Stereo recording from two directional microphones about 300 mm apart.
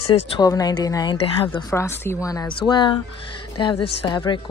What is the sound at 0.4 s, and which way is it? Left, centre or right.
Speech, centre.